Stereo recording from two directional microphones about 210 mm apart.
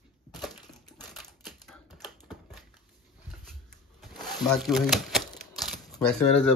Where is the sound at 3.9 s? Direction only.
Centre (ahead or behind).